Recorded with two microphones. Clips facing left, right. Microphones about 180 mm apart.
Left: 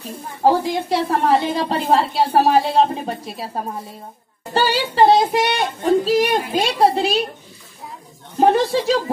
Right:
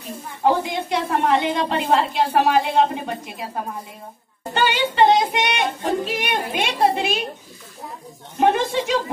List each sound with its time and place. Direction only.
0.4 s a woman's voice: 35° left (ahead or behind)
8.4 s a woman's voice: 35° left (ahead or behind)